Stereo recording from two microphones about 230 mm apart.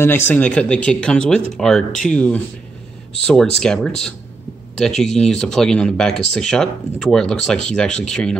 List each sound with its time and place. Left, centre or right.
0.3 s speech: centre